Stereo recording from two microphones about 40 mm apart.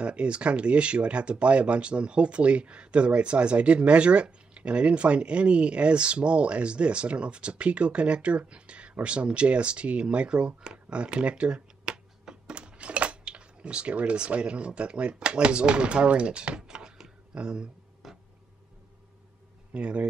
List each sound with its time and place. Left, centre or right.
0.0 s speech: right
18.0 s a sound: centre
19.7 s speech: right